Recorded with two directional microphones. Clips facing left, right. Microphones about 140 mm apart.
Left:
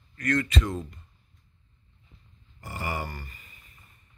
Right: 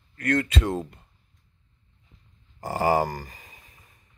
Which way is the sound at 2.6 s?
90° right.